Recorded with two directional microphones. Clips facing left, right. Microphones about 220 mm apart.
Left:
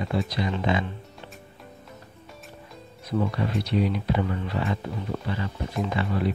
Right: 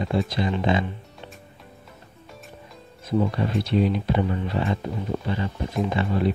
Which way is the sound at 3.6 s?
25° right (ahead or behind).